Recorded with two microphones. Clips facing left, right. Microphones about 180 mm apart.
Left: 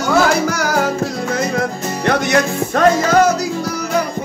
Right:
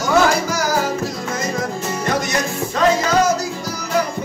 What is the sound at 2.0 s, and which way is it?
Music, 65° left (ahead or behind).